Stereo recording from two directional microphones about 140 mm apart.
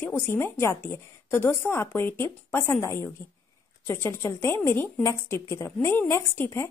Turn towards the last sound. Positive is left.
turn(degrees=20)  # may be behind; listen again after turning